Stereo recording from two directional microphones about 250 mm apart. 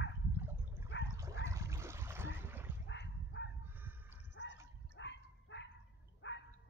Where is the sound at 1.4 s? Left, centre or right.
Centre.